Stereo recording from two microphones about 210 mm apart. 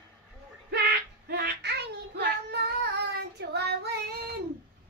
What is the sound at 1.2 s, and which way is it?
Child singing, 50° right (ahead or behind).